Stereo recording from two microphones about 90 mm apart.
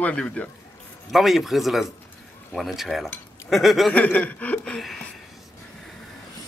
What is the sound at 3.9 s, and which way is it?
Speech, 15° left (ahead or behind).